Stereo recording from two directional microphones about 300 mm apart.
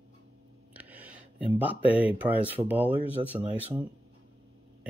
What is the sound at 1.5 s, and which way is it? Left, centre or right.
Speech, centre.